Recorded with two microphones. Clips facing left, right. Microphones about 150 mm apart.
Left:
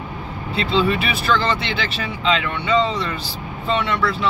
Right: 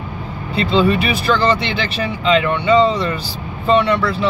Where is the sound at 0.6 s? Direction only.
40° right (ahead or behind).